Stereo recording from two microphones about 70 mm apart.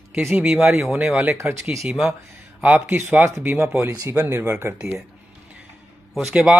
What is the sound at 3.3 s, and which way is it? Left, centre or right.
Speech, right.